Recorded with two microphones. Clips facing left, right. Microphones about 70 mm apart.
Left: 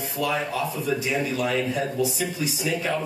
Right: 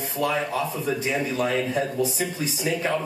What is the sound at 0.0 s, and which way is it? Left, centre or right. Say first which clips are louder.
Speech: right 1 dB; right.